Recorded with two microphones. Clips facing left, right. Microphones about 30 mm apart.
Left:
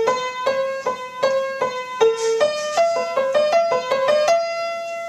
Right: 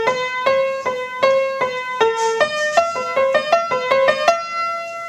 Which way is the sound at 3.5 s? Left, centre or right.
Centre.